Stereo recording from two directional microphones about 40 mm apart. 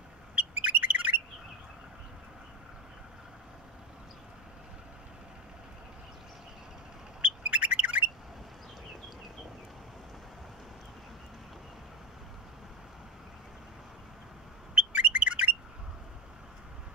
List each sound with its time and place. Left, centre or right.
0.6 s bird: right
7.2 s bird: right
14.8 s chirp: right